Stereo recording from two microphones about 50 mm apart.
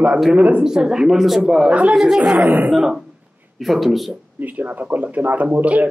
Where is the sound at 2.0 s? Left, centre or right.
Centre.